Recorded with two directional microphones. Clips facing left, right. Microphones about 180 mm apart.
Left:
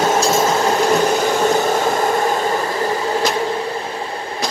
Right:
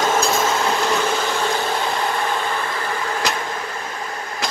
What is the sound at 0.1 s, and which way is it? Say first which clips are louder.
Train: left 4 dB; 40° left (ahead or behind).